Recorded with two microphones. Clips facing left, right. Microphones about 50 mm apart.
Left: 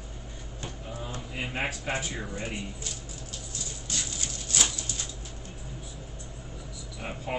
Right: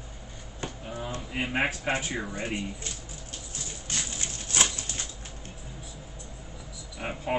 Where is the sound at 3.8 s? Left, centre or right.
Right.